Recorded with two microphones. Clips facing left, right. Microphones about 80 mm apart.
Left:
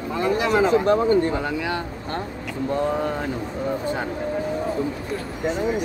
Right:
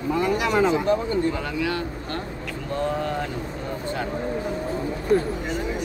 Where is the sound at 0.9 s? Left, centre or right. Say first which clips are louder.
Left 4 dB; left.